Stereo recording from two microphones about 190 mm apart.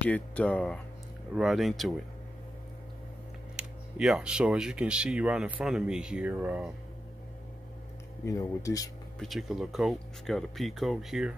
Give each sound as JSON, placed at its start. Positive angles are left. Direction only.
{"t": 0.0, "sound": "speech", "side_deg": 5}
{"t": 3.5, "sound": "speech", "side_deg": -5}
{"t": 8.3, "sound": "speech", "side_deg": 15}
{"t": 9.2, "sound": "speech", "side_deg": 0}